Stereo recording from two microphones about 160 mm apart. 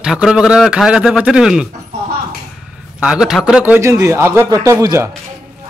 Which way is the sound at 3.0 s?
5° right (ahead or behind).